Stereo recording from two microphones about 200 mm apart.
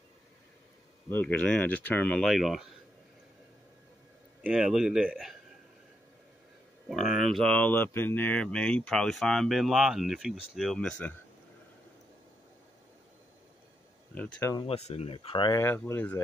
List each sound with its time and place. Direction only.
1.1 s speech: 5° left (ahead or behind)
4.4 s speech: 5° right (ahead or behind)
7.1 s speech: centre (ahead or behind)
14.1 s speech: 5° left (ahead or behind)
14.5 s speech: 25° left (ahead or behind); by 16.2 s 10° left (ahead or behind)